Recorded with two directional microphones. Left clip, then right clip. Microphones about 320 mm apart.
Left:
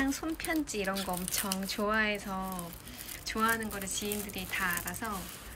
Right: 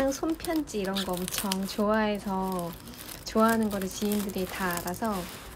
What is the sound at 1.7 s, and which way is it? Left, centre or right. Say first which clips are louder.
Speech: right 3 dB; centre.